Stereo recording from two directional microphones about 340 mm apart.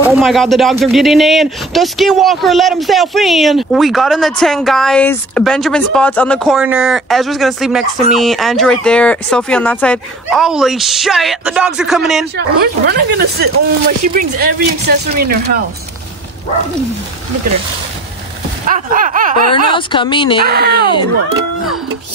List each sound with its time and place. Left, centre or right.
0.0 s speech: centre
12.4 s speech: right
18.7 s speech: right
19.7 s speech: centre
20.4 s speech: right
20.8 s speech: centre